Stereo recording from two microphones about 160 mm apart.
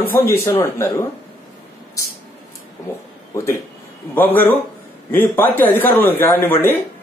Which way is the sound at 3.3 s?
15° left (ahead or behind).